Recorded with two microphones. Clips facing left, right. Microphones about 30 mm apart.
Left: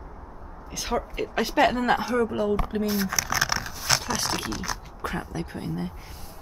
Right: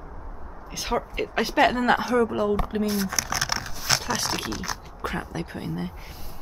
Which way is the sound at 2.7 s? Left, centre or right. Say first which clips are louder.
Even; centre.